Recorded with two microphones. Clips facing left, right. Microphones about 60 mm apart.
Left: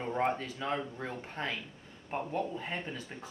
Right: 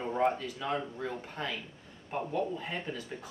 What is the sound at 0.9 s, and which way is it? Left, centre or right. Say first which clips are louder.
Speech: right 1 dB; left.